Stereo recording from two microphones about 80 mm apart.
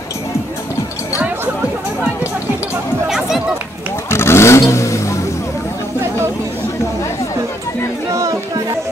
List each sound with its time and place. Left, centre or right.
3.1 s chatter: centre
4.1 s vehicle: left
8.1 s music: right